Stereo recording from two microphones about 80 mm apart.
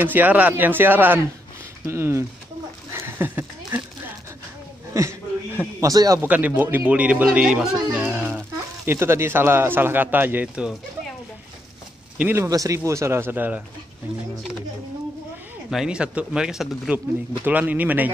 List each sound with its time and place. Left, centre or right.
0.0 s a man's voice: right
2.9 s a sound: right
4.9 s a man's voice: right
6.2 s a man's voice: centre
12.4 s speech: right
15.7 s speech: centre
17.5 s a man's voice: centre